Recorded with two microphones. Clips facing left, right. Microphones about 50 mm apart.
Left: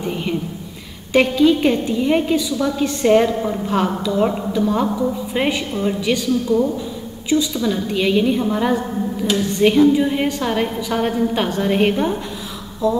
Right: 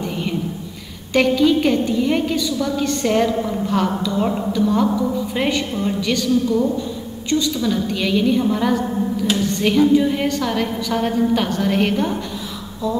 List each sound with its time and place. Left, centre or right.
0.0 s a woman's voice: centre